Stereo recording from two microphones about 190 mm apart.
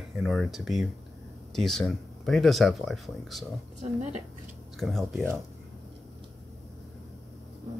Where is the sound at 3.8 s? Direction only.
35° right (ahead or behind).